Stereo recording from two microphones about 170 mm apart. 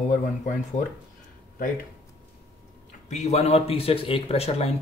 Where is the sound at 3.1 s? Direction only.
40° left (ahead or behind).